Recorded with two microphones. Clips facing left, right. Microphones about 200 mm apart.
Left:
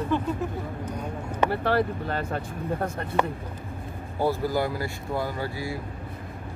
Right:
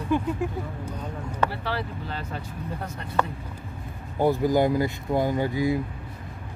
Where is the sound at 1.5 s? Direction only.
50° left (ahead or behind).